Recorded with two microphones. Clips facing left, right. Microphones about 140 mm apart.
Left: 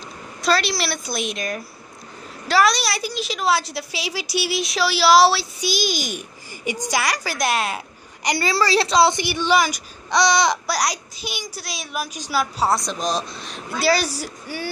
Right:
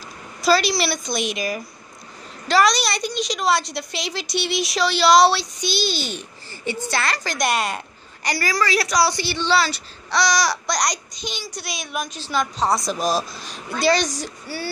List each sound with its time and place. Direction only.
0.4 s a woman's voice: centre (ahead or behind)
8.2 s a woman's voice: 20° left (ahead or behind)
10.7 s a child's voice: 5° left (ahead or behind)